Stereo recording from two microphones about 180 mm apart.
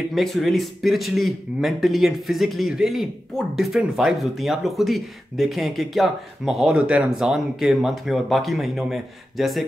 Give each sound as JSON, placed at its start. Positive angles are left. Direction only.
{"t": 0.1, "sound": "a man's voice", "side_deg": 0}